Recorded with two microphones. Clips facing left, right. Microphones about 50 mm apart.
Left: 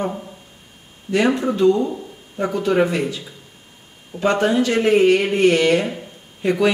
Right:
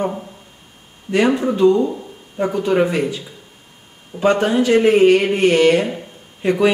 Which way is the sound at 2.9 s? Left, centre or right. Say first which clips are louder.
Right 2 dB; centre.